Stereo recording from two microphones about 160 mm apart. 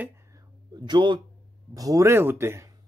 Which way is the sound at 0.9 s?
30° right (ahead or behind).